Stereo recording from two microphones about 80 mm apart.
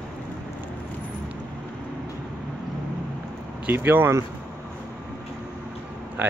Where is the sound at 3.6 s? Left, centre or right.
Right.